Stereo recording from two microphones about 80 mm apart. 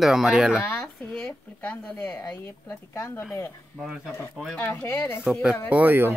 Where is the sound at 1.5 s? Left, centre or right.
Left.